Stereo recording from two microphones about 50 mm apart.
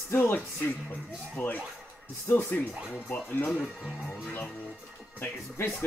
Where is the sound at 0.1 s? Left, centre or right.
Left.